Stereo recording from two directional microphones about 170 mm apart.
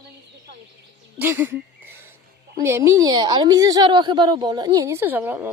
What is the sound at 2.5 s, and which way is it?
A woman's voice, 15° right (ahead or behind).